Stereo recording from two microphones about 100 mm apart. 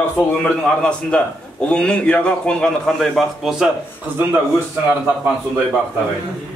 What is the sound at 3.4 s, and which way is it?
Speech, 5° right (ahead or behind).